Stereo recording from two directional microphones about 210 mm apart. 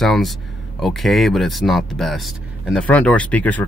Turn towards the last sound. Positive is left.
turn(degrees=5)  # may be behind; listen again after turning